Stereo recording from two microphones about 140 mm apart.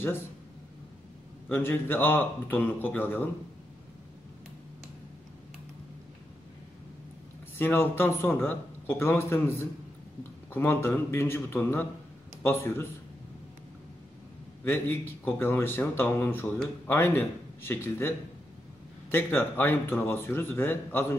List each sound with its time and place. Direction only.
1.5 s speech: 15° left (ahead or behind)
7.5 s speech: 15° left (ahead or behind)
14.6 s speech: 15° left (ahead or behind)